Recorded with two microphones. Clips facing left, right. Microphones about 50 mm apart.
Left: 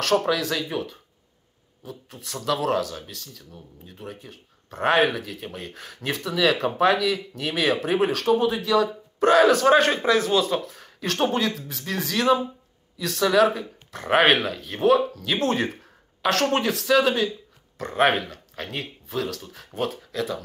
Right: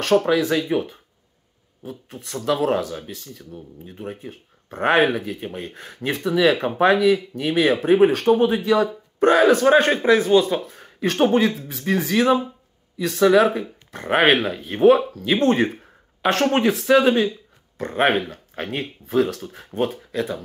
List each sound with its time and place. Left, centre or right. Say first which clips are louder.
0.3 s speech: right 5 dB; centre
2.2 s speech: right 4 dB; centre
19.5 s speech: right 4 dB; right